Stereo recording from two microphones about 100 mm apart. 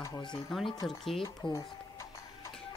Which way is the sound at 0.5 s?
Centre (ahead or behind).